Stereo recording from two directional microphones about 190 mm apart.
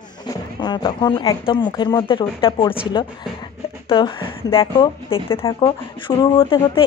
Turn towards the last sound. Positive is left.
turn(degrees=25)  # may be behind; listen again after turning